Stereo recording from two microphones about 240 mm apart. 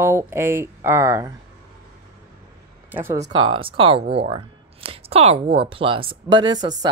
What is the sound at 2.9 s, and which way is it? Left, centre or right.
Speech, centre.